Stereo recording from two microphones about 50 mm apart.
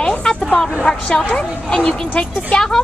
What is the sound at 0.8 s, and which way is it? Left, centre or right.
Speech, left.